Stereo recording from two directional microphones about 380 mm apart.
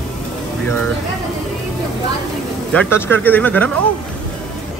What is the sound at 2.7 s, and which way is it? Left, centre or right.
Speech, centre.